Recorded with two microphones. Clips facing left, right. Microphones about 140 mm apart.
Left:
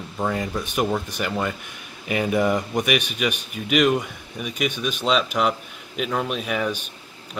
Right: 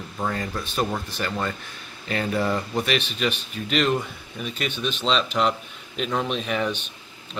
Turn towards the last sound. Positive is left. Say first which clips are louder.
# even
turn(degrees=5)  # may be behind; listen again after turning